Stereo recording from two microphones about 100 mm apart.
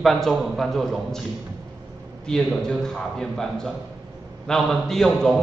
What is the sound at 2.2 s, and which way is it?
A man's voice, 5° left (ahead or behind).